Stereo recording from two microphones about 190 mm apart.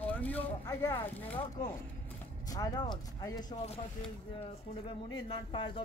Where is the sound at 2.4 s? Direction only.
20° left (ahead or behind).